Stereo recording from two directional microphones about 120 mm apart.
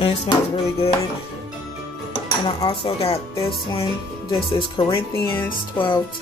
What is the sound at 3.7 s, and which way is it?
Music, 50° left (ahead or behind).